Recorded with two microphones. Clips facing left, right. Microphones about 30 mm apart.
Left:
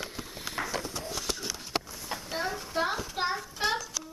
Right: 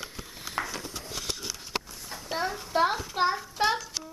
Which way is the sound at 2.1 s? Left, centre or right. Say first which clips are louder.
Left 5 dB; left.